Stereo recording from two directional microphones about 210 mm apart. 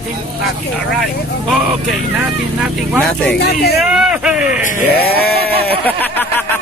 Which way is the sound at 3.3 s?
50° left (ahead or behind).